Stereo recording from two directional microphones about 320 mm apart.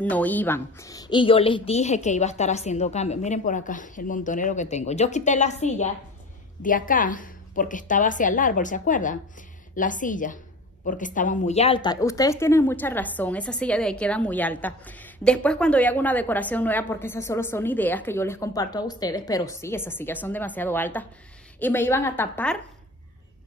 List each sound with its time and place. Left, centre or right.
0.0 s a woman's voice: centre